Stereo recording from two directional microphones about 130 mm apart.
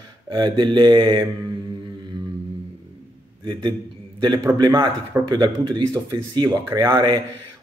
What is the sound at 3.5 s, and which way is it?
Speech, 35° right (ahead or behind).